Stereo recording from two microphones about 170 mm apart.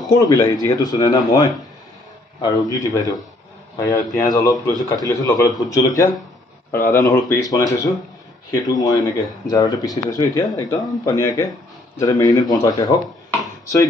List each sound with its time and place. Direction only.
0.2 s speech: 20° left (ahead or behind)